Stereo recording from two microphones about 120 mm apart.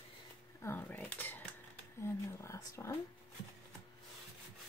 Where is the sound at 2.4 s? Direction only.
25° left (ahead or behind).